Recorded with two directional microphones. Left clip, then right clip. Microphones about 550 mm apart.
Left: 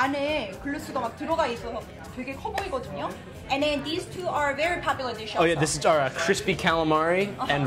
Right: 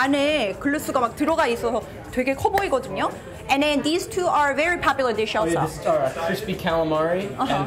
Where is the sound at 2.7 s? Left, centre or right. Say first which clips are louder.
Right 8 dB; right.